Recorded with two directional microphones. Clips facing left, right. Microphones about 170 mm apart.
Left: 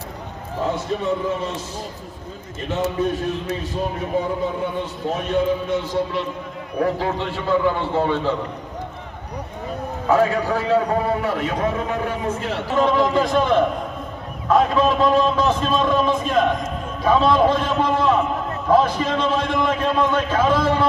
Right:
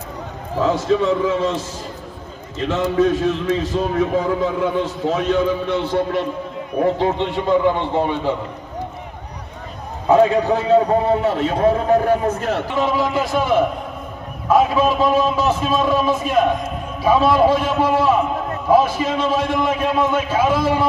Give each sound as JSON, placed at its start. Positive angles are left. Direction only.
{"t": 0.6, "sound": "a man's voice", "side_deg": -90}
{"t": 2.6, "sound": "a man's voice", "side_deg": -90}
{"t": 6.8, "sound": "a man's voice", "side_deg": -20}
{"t": 10.0, "sound": "a man's voice", "side_deg": -20}
{"t": 12.7, "sound": "a man's voice", "side_deg": -5}